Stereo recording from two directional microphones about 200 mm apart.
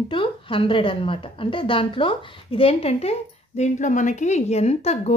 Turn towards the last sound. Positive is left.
turn(degrees=30)  # may be behind; listen again after turning